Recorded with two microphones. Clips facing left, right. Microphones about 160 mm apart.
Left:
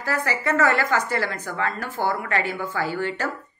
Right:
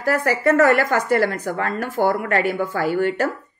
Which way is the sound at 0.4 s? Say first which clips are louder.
Right 6 dB; 55° right (ahead or behind).